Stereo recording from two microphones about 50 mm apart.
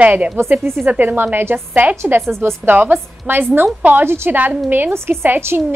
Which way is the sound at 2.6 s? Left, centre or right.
Right.